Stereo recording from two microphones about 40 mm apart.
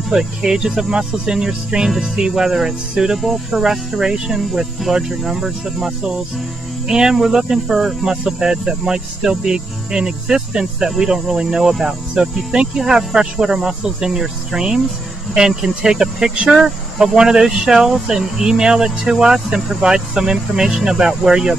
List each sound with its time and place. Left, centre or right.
0.1 s speech: centre